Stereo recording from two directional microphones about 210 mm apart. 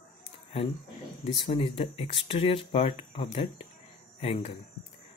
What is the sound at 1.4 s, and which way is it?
Speech, 25° left (ahead or behind).